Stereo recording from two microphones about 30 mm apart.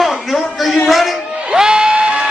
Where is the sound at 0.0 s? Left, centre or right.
Centre.